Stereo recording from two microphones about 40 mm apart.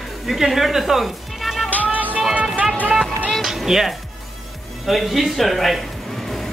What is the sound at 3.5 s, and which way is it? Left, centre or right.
Music, centre.